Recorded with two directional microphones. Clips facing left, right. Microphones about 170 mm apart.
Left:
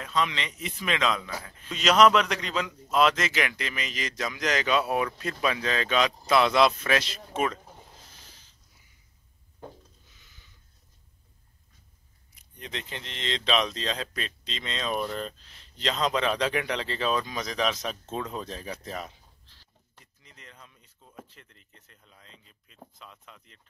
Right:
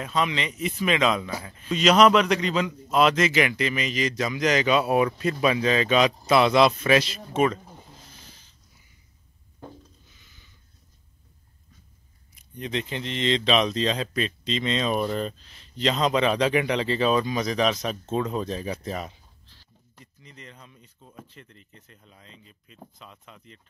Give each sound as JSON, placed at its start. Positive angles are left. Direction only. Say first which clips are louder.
{"t": 0.0, "sound": "speech", "louder": "right 3 dB", "side_deg": -10}
{"t": 12.5, "sound": "speech", "louder": "right 8 dB", "side_deg": -5}
{"t": 20.2, "sound": "speech", "louder": "right 5 dB", "side_deg": 0}